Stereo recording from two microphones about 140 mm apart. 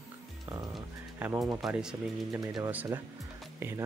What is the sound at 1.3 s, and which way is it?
Speech, 5° right (ahead or behind).